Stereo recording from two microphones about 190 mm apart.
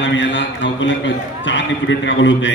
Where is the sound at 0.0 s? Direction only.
75° left (ahead or behind).